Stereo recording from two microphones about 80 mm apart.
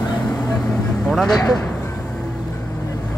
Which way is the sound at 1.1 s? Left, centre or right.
Centre.